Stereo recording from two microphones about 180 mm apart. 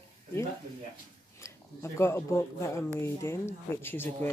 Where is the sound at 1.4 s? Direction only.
15° left (ahead or behind).